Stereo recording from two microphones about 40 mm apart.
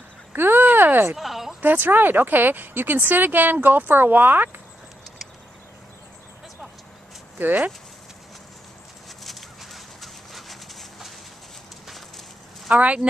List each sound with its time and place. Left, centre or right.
0.3 s a sound: right
1.1 s a sound: centre
1.6 s speech: right
7.3 s speech: right
9.2 s dog: centre
12.7 s speech: right